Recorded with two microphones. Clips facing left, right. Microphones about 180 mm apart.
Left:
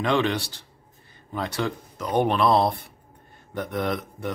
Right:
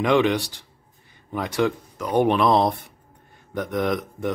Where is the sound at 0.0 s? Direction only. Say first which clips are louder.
Right 4 dB; 15° right (ahead or behind).